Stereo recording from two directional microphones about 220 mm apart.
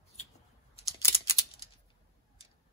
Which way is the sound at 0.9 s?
15° left (ahead or behind).